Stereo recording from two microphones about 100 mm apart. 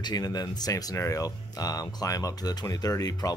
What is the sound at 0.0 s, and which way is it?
Speech, 40° left (ahead or behind).